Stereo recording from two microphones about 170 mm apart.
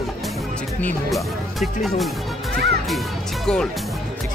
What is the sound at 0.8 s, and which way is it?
Speech, centre (ahead or behind).